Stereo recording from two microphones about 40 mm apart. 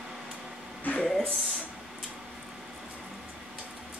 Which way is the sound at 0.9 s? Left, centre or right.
Left.